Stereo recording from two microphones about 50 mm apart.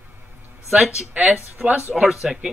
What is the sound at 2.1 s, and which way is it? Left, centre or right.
Speech, centre.